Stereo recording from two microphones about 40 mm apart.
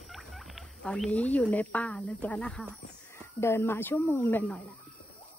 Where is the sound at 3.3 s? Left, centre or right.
Left.